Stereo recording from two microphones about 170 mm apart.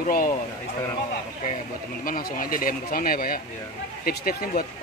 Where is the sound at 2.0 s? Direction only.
55° left (ahead or behind).